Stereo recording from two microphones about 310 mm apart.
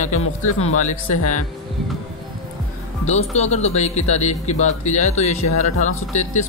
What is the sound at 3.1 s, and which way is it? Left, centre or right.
A man's voice, left.